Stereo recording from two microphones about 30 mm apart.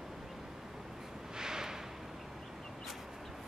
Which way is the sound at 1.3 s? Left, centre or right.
Right.